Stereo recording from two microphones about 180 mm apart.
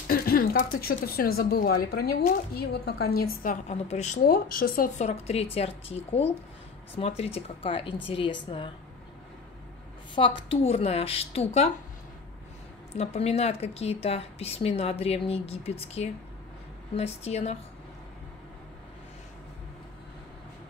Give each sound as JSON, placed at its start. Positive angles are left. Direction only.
{"t": 0.1, "sound": "a sound", "side_deg": 55}
{"t": 0.7, "sound": "speech", "side_deg": 55}
{"t": 3.6, "sound": "a woman's voice", "side_deg": 35}
{"t": 4.3, "sound": "speech", "side_deg": 55}
{"t": 5.0, "sound": "a woman's voice", "side_deg": 35}
{"t": 10.2, "sound": "a woman's voice", "side_deg": 30}
{"t": 12.9, "sound": "a woman's voice", "side_deg": 35}